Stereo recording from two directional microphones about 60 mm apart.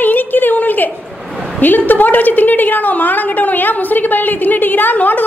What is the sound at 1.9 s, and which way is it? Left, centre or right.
A woman's voice, left.